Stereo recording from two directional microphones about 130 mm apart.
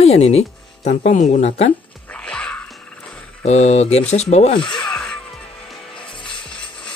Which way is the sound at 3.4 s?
55° left (ahead or behind).